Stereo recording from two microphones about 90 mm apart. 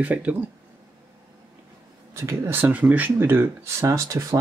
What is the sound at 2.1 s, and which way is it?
Speech, 30° right (ahead or behind).